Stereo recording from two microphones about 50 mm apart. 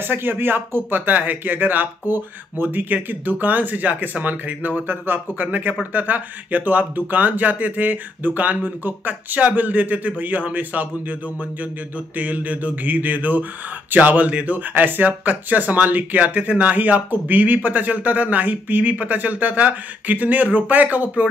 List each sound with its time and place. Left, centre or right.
0.0 s speech: right
5.5 s speech: right
12.2 s speech: right
14.7 s speech: right